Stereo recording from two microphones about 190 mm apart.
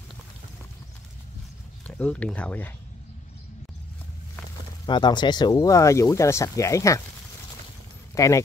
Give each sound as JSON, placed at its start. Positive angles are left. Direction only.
{"t": 1.9, "sound": "speech", "side_deg": 5}
{"t": 4.8, "sound": "speech", "side_deg": 25}
{"t": 8.1, "sound": "speech", "side_deg": 15}